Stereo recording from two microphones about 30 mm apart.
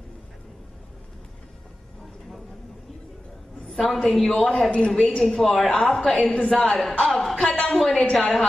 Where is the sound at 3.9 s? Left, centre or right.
Centre.